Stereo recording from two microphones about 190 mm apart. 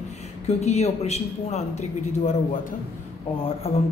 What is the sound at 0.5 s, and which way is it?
A man's voice, 35° left (ahead or behind).